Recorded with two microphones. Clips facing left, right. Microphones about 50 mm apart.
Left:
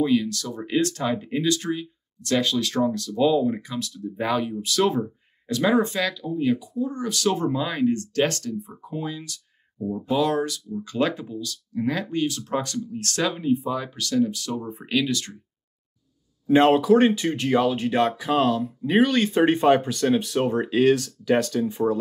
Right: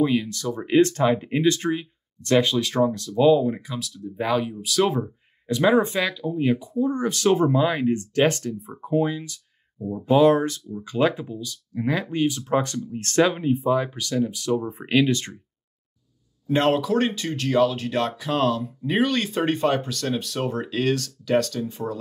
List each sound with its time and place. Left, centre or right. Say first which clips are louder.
0.0 s speech: even; centre
5.5 s speech: right 2 dB; centre
6.6 s speech: right 4 dB; right
10.8 s speech: right 3 dB; centre
14.7 s speech: right 2 dB; right
16.4 s speech: left 4 dB; centre
18.1 s speech: left 1 dB; centre
19.4 s speech: left 5 dB; centre